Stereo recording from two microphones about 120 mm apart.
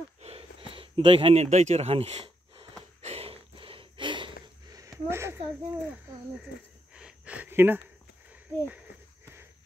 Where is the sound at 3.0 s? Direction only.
60° right (ahead or behind); by 4.3 s 40° right (ahead or behind).